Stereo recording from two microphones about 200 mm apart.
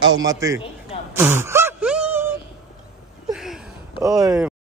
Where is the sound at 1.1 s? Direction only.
10° right (ahead or behind).